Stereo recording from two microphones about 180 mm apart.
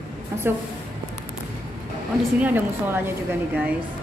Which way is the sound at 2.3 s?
10° right (ahead or behind).